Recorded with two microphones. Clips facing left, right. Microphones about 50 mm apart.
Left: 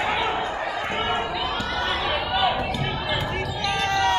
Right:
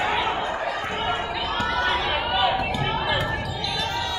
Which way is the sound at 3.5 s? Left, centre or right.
Left.